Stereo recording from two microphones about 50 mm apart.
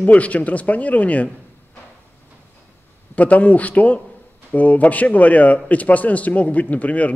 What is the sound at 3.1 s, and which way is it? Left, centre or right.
A man's voice, left.